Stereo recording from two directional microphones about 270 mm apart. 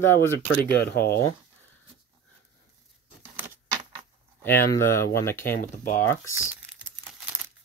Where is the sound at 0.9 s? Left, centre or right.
Left.